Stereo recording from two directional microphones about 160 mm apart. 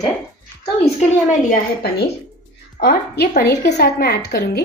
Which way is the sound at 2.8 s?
75° left (ahead or behind).